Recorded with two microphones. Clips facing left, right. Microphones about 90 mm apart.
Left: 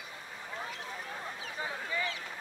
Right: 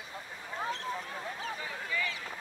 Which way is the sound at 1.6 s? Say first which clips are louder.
Left 5 dB; 30° left (ahead or behind).